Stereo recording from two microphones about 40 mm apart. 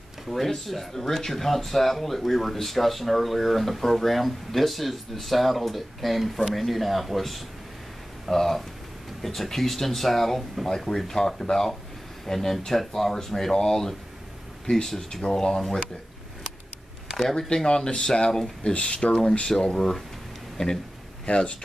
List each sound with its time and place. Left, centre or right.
0.3 s speech: centre
17.3 s speech: centre
19.4 s speech: centre